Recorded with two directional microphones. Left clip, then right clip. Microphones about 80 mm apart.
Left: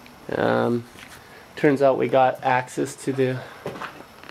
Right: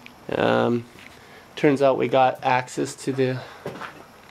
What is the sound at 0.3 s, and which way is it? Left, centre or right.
Speech, right.